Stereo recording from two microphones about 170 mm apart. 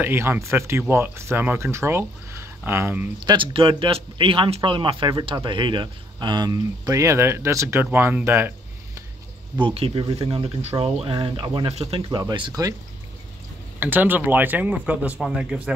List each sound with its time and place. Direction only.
0.0 s speech: 15° right (ahead or behind)
3.2 s speech: 25° right (ahead or behind)
9.6 s speech: 35° right (ahead or behind)
13.7 s speech: 10° right (ahead or behind)